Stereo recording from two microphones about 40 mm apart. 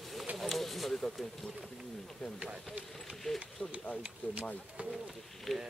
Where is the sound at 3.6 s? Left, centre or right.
Left.